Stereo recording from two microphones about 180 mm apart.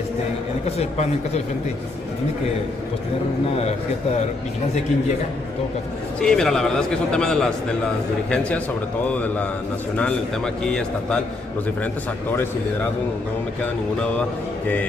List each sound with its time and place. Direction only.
0.7 s speech: 35° left (ahead or behind)
6.2 s a man's voice: centre (ahead or behind)
9.1 s a man's voice: 10° left (ahead or behind)